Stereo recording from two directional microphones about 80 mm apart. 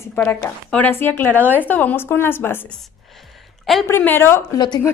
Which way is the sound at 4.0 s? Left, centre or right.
Left.